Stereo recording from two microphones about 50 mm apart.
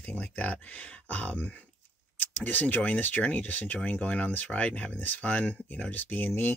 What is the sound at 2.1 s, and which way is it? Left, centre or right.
Speech, left.